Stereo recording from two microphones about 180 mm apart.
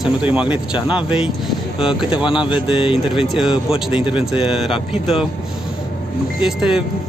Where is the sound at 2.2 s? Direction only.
25° left (ahead or behind).